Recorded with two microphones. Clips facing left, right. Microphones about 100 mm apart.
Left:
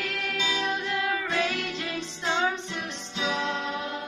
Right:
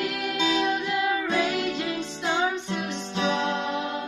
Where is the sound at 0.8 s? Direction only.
10° right (ahead or behind).